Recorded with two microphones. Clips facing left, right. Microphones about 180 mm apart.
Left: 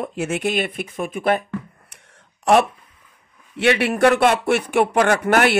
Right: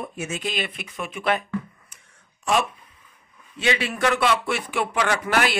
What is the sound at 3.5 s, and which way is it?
Speech, 70° left (ahead or behind).